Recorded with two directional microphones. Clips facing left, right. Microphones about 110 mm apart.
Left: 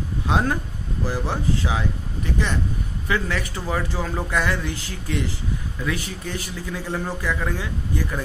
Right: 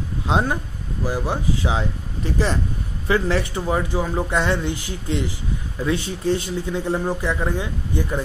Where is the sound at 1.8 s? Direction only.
35° right (ahead or behind); by 4.3 s 15° right (ahead or behind).